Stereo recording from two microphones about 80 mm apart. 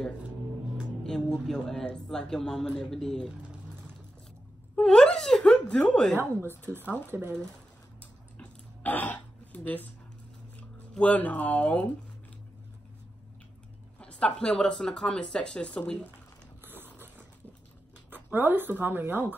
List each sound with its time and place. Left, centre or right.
1.0 s a man's voice: centre
4.7 s whimper: centre
6.1 s speech: right
8.0 s a sound: centre
11.0 s speech: centre
13.9 s a man's voice: centre
16.6 s a sound: right
18.1 s speech: right